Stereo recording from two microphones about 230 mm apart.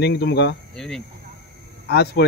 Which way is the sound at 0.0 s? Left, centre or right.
Left.